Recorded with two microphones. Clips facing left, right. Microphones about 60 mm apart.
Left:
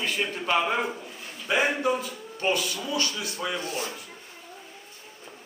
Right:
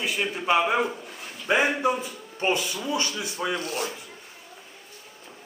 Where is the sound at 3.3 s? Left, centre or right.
Centre.